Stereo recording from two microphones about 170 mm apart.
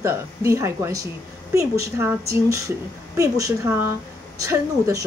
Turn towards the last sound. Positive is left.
turn(degrees=-20)  # may be behind; listen again after turning